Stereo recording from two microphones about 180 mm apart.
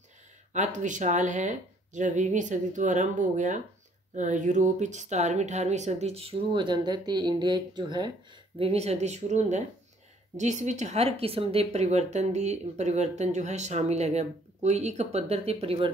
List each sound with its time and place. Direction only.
0.5 s speech: 40° right (ahead or behind)